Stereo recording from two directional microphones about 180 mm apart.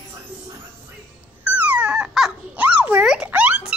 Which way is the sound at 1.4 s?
10° right (ahead or behind).